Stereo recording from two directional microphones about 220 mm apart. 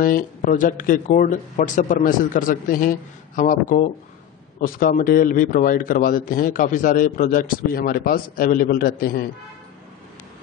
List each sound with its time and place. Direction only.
0.0 s a man's voice: 40° left (ahead or behind)